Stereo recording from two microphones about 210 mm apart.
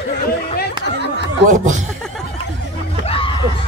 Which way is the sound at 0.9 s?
55° left (ahead or behind).